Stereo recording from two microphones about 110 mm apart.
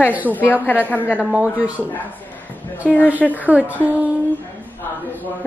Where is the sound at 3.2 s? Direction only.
15° left (ahead or behind).